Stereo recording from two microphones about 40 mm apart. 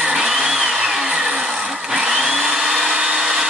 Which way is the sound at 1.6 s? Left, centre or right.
Centre.